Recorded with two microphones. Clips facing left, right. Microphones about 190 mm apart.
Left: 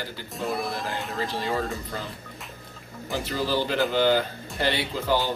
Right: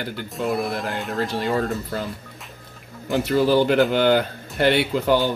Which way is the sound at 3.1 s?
65° right (ahead or behind).